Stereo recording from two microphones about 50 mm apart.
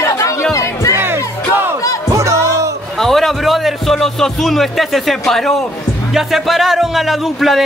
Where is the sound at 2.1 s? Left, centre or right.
Right.